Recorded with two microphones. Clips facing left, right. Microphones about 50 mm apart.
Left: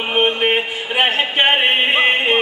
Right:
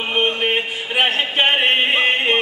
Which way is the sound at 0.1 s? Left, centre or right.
Centre.